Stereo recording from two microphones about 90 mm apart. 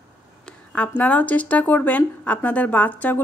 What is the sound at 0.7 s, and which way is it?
Speech, 15° left (ahead or behind).